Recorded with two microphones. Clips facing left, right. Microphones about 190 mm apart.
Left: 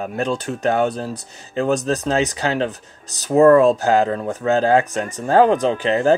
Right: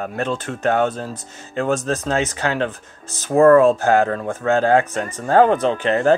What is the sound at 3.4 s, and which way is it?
Speech, 15° left (ahead or behind).